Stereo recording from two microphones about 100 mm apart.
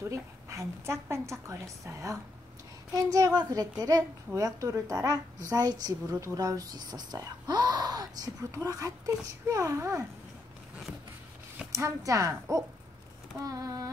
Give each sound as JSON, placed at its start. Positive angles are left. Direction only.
{"t": 0.1, "sound": "a woman's voice", "side_deg": -30}
{"t": 11.7, "sound": "a child's voice", "side_deg": -35}